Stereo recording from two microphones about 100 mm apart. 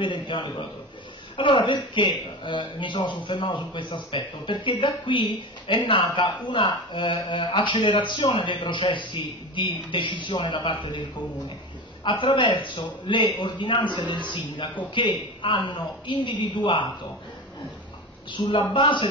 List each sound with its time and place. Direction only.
0.0 s speech: 50° left (ahead or behind)
18.3 s speech: 55° left (ahead or behind)